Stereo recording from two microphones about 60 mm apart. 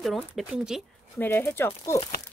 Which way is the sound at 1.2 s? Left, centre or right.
Left.